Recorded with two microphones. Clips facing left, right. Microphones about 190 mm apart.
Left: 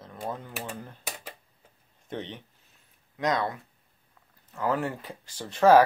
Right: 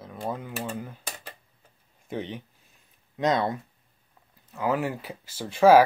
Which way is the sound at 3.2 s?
25° right (ahead or behind).